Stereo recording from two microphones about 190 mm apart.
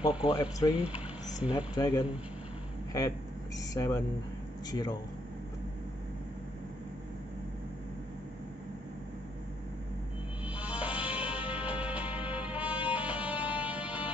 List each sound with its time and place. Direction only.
0.3 s speech: 20° left (ahead or behind)
0.7 s a sound: 5° right (ahead or behind)
1.8 s speech: 20° left (ahead or behind)
3.5 s speech: 20° left (ahead or behind)
10.4 s music: 5° right (ahead or behind)